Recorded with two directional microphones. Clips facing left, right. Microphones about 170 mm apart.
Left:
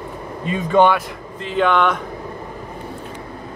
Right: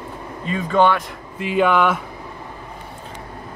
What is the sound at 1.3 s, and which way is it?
Speech, 10° right (ahead or behind).